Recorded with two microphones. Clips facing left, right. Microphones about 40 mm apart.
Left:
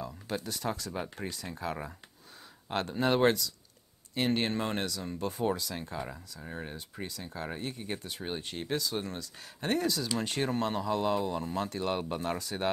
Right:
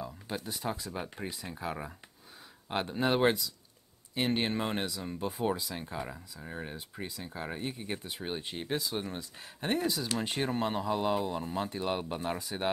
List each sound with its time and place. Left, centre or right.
0.4 s speech: right
0.9 s speech: centre